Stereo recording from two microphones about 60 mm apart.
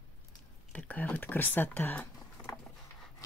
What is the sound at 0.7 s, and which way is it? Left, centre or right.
Speech, left.